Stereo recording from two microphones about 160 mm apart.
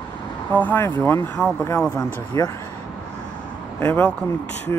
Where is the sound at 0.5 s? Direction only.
10° left (ahead or behind).